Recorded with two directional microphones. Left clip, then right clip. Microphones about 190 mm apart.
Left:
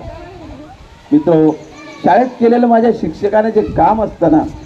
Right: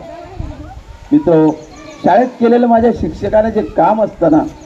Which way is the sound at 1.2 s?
10° right (ahead or behind).